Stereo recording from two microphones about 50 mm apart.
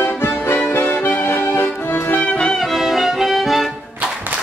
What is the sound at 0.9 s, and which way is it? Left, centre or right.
Music, left.